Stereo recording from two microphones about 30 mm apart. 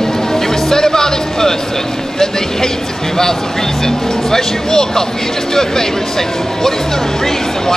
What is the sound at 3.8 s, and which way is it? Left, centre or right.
Speech, centre.